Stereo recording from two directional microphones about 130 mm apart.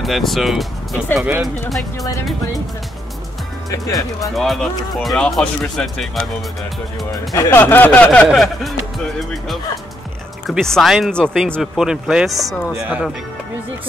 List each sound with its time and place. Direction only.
0.0 s speech: centre (ahead or behind)
3.7 s speech: 25° left (ahead or behind)
4.4 s speech: centre (ahead or behind)
7.3 s speech: 20° left (ahead or behind)
8.3 s speech: centre (ahead or behind)
10.4 s speech: centre (ahead or behind)
12.7 s speech: 15° right (ahead or behind)